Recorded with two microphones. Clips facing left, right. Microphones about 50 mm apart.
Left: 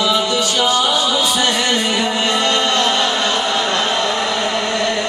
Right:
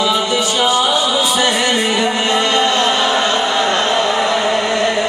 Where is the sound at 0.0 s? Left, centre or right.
Centre.